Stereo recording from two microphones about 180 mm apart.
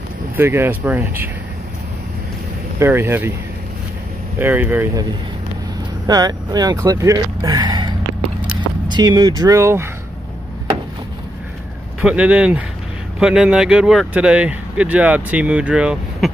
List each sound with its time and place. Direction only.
0.4 s speech: 10° right (ahead or behind)
2.8 s speech: 15° right (ahead or behind)
4.4 s speech: 10° right (ahead or behind)
6.0 s speech: 20° right (ahead or behind)
12.0 s speech: 5° right (ahead or behind)